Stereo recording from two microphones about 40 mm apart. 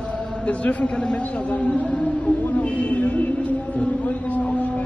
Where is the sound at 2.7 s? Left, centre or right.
Left.